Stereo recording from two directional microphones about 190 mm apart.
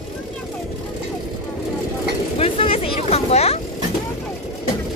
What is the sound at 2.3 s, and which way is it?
Boat, 30° left (ahead or behind).